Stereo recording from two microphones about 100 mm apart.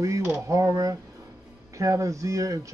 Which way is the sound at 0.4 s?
30° right (ahead or behind).